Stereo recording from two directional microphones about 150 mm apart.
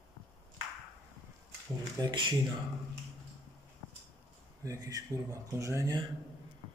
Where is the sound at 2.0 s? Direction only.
30° right (ahead or behind).